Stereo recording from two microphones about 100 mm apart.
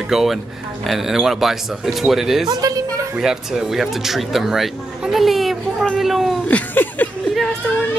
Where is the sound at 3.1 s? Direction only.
5° right (ahead or behind).